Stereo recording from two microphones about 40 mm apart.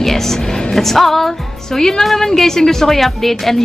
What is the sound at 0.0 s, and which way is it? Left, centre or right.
Music, centre.